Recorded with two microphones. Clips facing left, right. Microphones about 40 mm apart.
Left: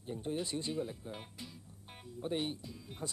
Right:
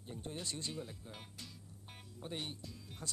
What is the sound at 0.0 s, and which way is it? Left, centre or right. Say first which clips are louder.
Speech: left 7 dB; centre.